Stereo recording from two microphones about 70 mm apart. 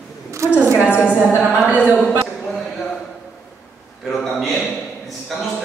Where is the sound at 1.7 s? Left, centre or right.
Right.